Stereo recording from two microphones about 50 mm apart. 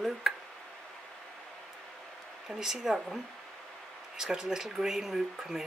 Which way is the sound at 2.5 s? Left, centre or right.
Centre.